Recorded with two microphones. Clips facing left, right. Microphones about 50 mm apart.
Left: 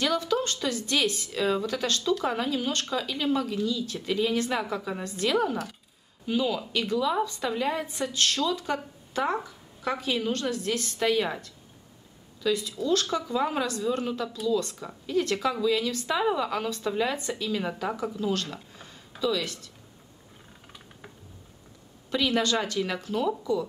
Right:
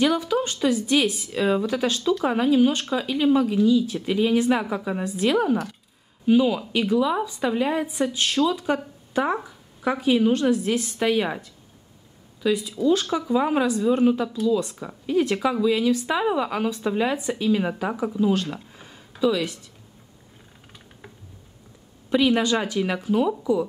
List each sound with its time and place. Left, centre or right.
0.0 s speech: centre
22.1 s speech: centre